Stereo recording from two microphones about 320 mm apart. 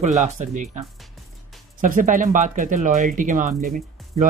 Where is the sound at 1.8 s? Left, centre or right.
Right.